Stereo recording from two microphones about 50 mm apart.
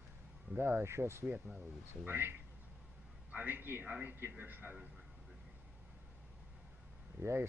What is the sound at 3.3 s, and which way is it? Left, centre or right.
Speech, right.